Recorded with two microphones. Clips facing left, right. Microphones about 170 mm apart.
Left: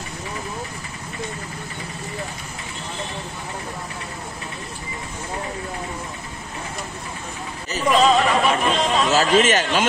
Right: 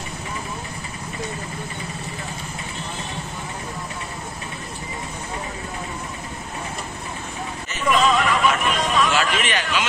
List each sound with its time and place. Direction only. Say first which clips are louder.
7.7 s chatter: left 3 dB; 35° left (ahead or behind)
9.1 s a man's voice: left 6 dB; 40° left (ahead or behind)